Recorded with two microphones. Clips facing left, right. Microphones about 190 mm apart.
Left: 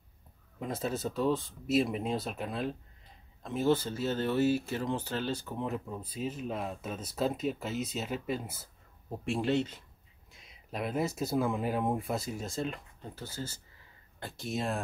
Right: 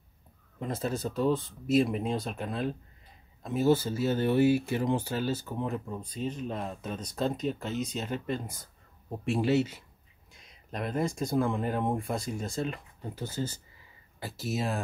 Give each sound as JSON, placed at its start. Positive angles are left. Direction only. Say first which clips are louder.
{"t": 0.6, "sound": "speech", "louder": "right 2 dB", "side_deg": 0}
{"t": 13.1, "sound": "speech", "louder": "right 6 dB", "side_deg": -20}
{"t": 14.2, "sound": "speech", "louder": "right 2 dB", "side_deg": -5}